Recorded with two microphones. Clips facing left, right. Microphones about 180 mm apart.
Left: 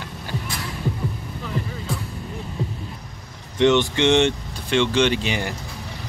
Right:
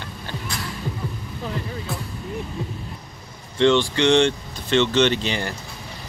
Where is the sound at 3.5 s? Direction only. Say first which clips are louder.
Even; 15° left (ahead or behind).